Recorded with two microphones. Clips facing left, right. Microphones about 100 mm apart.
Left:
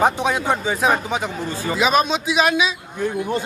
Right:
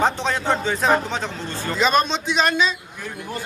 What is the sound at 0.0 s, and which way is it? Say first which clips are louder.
Speech: left 3 dB; 10° left (ahead or behind).